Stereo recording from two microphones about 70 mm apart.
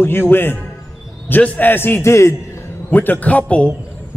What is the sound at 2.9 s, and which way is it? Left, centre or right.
Speech, left.